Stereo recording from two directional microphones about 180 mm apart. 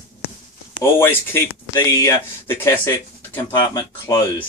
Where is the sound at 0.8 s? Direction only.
10° left (ahead or behind).